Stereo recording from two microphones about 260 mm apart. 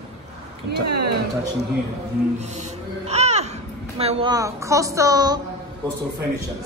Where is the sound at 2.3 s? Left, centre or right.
Right.